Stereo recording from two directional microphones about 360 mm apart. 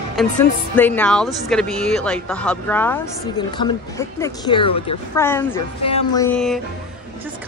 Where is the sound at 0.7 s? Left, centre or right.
Centre.